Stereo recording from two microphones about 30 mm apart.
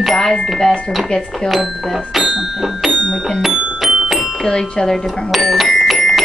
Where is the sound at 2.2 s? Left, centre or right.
Centre.